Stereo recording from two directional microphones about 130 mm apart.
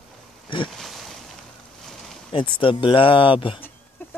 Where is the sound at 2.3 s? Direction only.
40° left (ahead or behind).